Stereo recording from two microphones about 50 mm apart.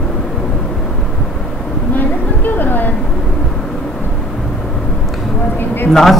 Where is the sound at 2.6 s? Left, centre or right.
Left.